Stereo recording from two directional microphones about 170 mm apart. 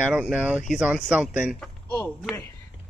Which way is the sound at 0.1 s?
5° right (ahead or behind).